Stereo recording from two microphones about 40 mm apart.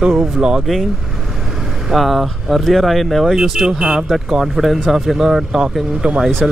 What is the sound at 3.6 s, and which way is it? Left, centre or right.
Speech, right.